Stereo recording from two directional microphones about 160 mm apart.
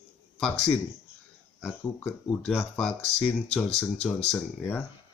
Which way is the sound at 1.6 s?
5° left (ahead or behind).